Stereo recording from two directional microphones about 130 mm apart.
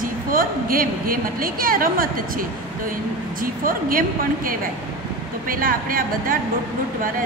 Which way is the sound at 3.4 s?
90° right.